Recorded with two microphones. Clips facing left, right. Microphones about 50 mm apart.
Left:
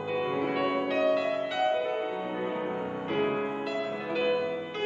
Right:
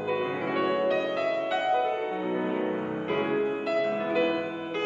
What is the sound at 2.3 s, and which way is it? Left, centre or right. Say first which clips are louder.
Music: right 4 dB; right.